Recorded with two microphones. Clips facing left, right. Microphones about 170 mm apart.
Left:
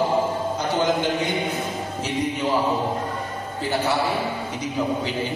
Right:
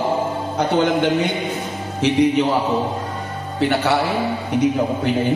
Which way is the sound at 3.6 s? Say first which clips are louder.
Right 6 dB; 70° right (ahead or behind).